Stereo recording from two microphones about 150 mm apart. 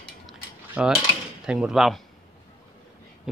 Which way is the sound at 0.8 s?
10° right (ahead or behind).